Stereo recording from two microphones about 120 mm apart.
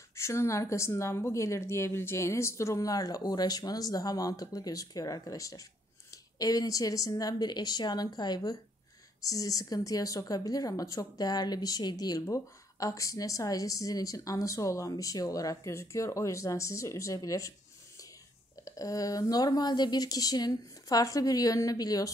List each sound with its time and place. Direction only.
0.1 s a woman's voice: 25° left (ahead or behind)
18.6 s speech: 30° left (ahead or behind)